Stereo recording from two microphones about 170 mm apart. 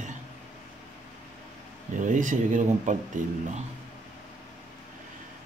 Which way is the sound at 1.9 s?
50° right (ahead or behind).